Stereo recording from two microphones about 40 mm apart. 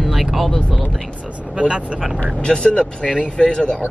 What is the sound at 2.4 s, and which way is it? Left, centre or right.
Speech, left.